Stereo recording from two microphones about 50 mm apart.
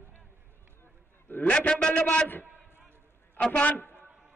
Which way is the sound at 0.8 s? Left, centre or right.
Left.